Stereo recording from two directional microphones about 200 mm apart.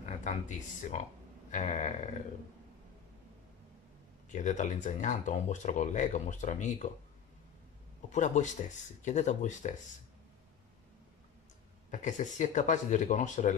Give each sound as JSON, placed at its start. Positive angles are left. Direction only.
{"t": 0.3, "sound": "speech", "side_deg": 35}
{"t": 4.3, "sound": "speech", "side_deg": 40}
{"t": 8.1, "sound": "speech", "side_deg": 35}
{"t": 11.9, "sound": "speech", "side_deg": 40}